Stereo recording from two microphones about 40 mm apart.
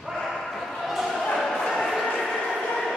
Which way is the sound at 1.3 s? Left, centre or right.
Centre.